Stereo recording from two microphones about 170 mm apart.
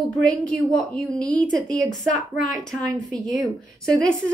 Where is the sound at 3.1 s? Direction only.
20° right (ahead or behind).